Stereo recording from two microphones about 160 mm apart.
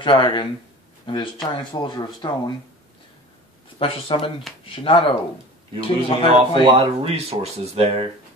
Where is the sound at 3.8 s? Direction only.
35° left (ahead or behind).